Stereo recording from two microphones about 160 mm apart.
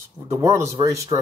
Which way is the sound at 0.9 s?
20° right (ahead or behind).